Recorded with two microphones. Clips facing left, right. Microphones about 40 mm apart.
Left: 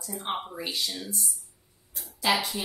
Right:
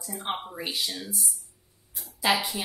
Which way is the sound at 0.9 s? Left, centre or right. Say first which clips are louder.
Even; centre.